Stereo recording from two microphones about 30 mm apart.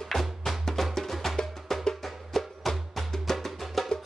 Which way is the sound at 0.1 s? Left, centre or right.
Centre.